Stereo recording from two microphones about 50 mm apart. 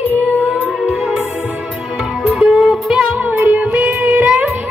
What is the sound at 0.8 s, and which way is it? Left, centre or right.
Music, centre.